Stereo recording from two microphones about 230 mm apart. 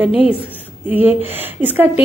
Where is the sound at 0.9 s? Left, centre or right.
Centre.